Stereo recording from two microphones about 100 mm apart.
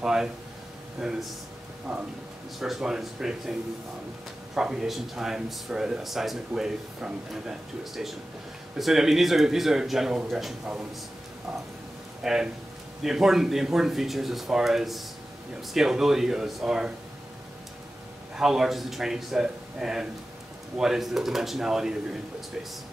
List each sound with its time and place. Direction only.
0.0 s speech: 5° right (ahead or behind)
4.6 s speech: 5° right (ahead or behind)
12.2 s speech: 5° right (ahead or behind)
18.3 s speech: 5° right (ahead or behind)